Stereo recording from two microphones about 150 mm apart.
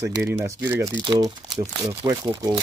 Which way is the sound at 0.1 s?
20° right (ahead or behind).